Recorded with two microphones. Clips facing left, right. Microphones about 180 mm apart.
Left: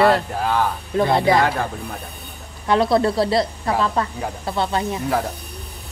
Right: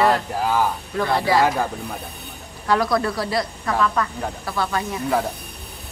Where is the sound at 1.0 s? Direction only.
20° left (ahead or behind).